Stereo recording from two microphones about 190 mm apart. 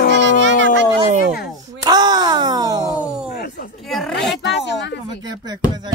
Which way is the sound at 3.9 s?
5° left (ahead or behind).